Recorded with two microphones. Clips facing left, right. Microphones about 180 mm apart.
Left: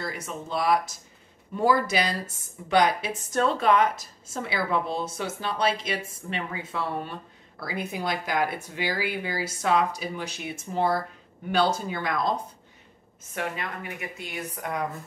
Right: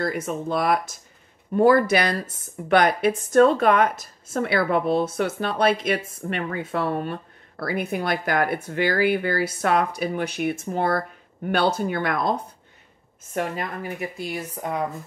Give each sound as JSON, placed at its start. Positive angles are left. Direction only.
{"t": 0.0, "sound": "a woman's voice", "side_deg": -55}
{"t": 13.3, "sound": "speech", "side_deg": -40}